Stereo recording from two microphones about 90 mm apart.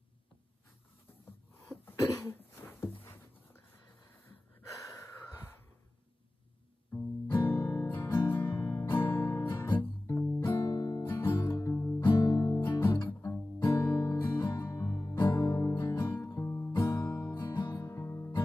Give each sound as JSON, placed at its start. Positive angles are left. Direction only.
{"t": 2.1, "sound": "a sound", "side_deg": 25}
{"t": 6.9, "sound": "music", "side_deg": 25}
{"t": 9.0, "sound": "guitar", "side_deg": 25}
{"t": 10.2, "sound": "music", "side_deg": 15}
{"t": 10.5, "sound": "music", "side_deg": 45}
{"t": 11.1, "sound": "music", "side_deg": 25}
{"t": 12.2, "sound": "music", "side_deg": 45}
{"t": 12.8, "sound": "guitar", "side_deg": 25}
{"t": 14.9, "sound": "music", "side_deg": 35}